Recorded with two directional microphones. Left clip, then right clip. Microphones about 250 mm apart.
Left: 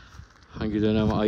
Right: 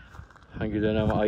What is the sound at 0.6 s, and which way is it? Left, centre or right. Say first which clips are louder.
Speech: left 1 dB; left.